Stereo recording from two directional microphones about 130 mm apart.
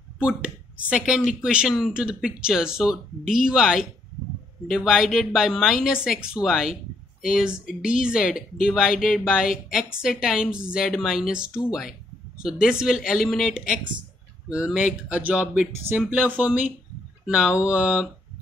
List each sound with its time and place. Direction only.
0.2 s speech: 10° right (ahead or behind)